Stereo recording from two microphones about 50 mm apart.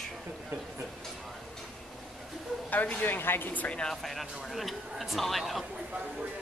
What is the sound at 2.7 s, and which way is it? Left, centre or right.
Speech, left.